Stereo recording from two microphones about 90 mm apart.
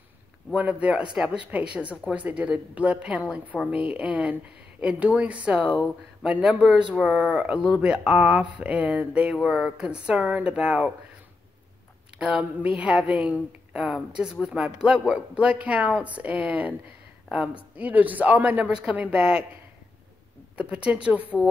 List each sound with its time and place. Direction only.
0.6 s a woman's voice: 15° right (ahead or behind)
12.2 s a woman's voice: 10° right (ahead or behind)
17.7 s a woman's voice: 15° right (ahead or behind)
20.5 s a woman's voice: 15° right (ahead or behind)